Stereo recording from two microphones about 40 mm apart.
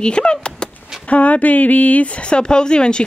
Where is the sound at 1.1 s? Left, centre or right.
Left.